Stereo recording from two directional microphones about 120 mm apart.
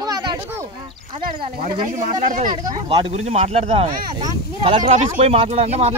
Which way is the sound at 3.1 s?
65° right (ahead or behind).